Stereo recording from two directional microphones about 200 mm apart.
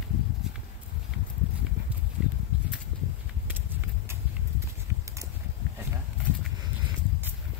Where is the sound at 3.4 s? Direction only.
10° right (ahead or behind).